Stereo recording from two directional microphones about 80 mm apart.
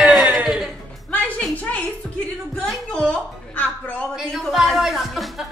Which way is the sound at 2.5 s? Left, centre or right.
Centre.